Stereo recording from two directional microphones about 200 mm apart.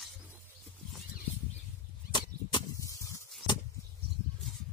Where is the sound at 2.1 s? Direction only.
20° left (ahead or behind).